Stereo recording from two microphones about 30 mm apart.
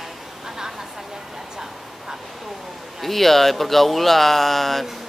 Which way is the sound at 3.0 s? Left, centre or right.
Centre.